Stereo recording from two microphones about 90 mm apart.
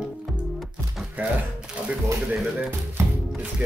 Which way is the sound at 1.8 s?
15° right (ahead or behind).